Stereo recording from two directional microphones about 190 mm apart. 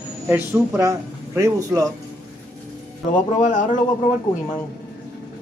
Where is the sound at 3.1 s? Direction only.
40° left (ahead or behind).